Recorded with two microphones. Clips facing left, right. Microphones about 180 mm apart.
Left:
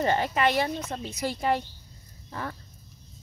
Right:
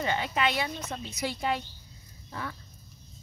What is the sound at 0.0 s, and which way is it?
Speech, 45° left (ahead or behind).